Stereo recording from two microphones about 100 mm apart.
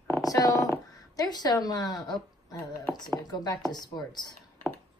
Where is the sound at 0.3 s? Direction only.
35° left (ahead or behind).